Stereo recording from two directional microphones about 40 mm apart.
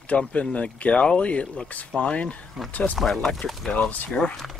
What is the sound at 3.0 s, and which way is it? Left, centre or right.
Speech, centre.